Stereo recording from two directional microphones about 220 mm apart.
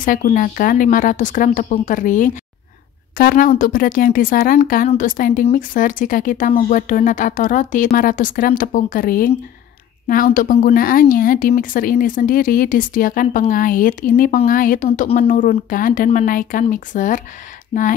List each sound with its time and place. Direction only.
0.0 s speech: 40° left (ahead or behind)